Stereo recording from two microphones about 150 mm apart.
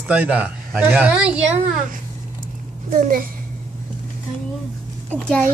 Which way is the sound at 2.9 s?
60° right (ahead or behind).